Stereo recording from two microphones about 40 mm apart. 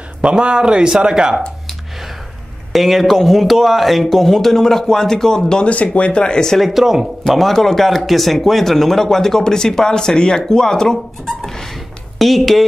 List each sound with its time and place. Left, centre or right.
0.2 s speech: right
2.7 s speech: centre
5.6 s speech: left; by 6.6 s centre
6.6 s speech: centre
7.2 s speech: centre